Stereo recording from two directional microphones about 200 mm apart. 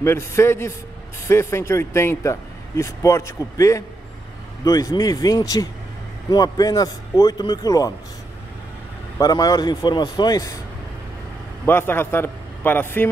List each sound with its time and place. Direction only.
0.0 s a man's voice: 10° left (ahead or behind)
9.2 s a man's voice: 20° left (ahead or behind)
11.6 s a man's voice: 10° left (ahead or behind)